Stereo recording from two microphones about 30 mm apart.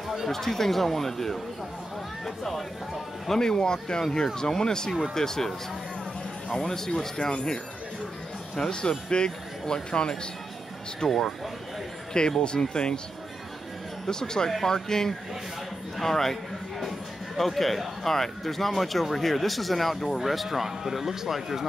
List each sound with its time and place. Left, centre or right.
0.3 s speech: centre
3.3 s speech: left
6.5 s speech: centre
11.1 s speech: centre
12.1 s speech: left
14.0 s speech: left
17.4 s speech: centre